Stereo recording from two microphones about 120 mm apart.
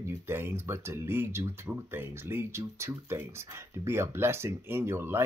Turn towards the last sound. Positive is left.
turn(degrees=-20)  # may be behind; listen again after turning